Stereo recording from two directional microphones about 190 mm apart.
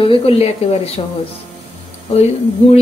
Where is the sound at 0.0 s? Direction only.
30° left (ahead or behind).